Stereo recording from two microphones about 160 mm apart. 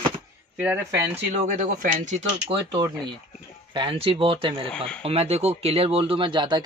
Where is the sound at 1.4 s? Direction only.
50° right (ahead or behind).